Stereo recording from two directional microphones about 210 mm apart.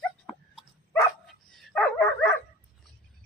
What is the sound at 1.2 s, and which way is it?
Dog, centre (ahead or behind).